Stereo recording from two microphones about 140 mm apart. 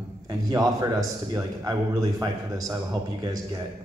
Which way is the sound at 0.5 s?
25° right (ahead or behind).